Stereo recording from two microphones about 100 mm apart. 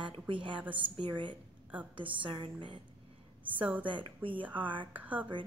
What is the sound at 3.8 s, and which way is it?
A woman's voice, 55° right (ahead or behind).